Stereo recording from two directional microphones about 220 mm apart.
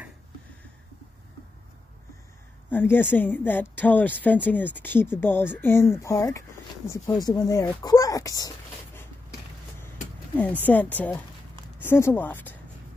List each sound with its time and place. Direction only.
2.7 s speech: 10° left (ahead or behind)
10.3 s speech: 5° left (ahead or behind)